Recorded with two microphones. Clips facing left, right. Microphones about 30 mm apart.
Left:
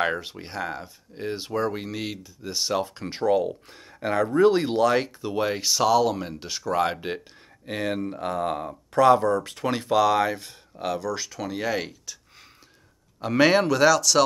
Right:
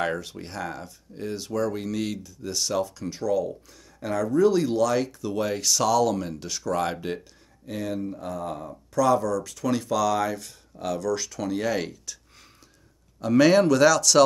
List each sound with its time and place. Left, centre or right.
0.0 s speech: left
2.9 s speech: left
7.6 s speech: left; by 12.2 s centre
13.2 s speech: left; by 14.2 s centre